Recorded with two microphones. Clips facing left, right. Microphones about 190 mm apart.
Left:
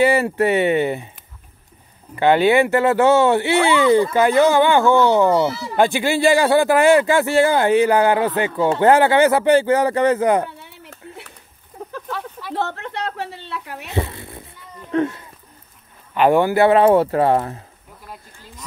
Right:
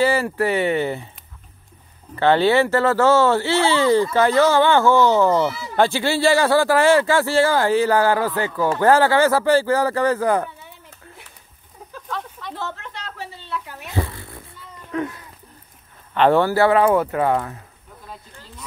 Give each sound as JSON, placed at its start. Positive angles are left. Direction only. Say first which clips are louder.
{"t": 0.0, "sound": "speech", "louder": "left 3 dB", "side_deg": 20}
{"t": 2.1, "sound": "speech", "louder": "left 2 dB", "side_deg": 15}
{"t": 10.6, "sound": "a sound", "louder": "left 4 dB", "side_deg": 70}
{"t": 12.1, "sound": "snake", "louder": "right 1 dB", "side_deg": 5}
{"t": 12.5, "sound": "a sound", "louder": "left 9 dB", "side_deg": 65}
{"t": 13.9, "sound": "cat", "louder": "left 2 dB", "side_deg": 25}
{"t": 16.2, "sound": "speech", "louder": "left 1 dB", "side_deg": 15}